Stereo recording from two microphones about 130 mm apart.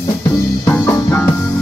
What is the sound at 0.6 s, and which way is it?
Music, 20° left (ahead or behind).